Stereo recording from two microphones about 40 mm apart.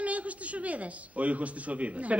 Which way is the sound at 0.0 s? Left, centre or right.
Right.